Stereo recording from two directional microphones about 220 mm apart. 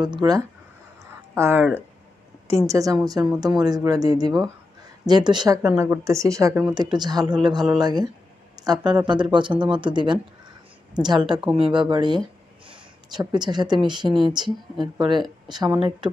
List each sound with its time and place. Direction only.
0.0 s speech: 20° right (ahead or behind)
12.6 s a sound: 20° right (ahead or behind)
13.8 s speech: 20° right (ahead or behind)